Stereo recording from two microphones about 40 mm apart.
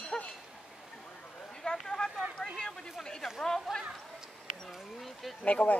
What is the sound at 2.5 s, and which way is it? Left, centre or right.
Speech, centre.